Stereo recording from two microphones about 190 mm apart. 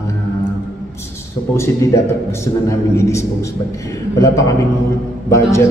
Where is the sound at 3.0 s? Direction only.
15° left (ahead or behind).